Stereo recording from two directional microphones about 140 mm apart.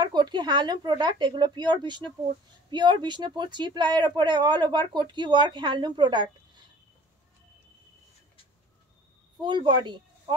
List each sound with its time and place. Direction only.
0.0 s speech: 30° right (ahead or behind)
9.4 s speech: 35° right (ahead or behind)